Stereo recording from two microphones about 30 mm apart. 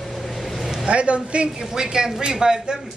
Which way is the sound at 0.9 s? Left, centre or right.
Right.